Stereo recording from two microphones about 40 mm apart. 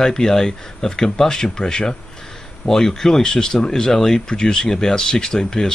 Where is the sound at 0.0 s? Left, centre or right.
Centre.